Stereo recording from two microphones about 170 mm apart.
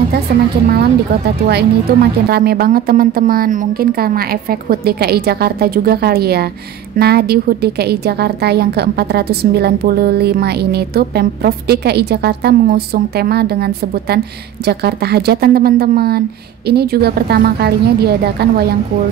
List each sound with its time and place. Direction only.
0.7 s a woman's voice: 70° right (ahead or behind)